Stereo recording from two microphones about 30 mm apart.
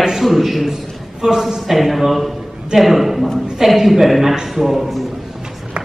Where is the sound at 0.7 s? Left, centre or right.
Centre.